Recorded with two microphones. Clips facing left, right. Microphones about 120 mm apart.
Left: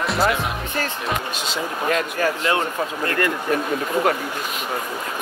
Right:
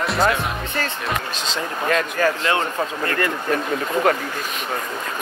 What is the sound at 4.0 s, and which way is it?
Speech, 10° left (ahead or behind).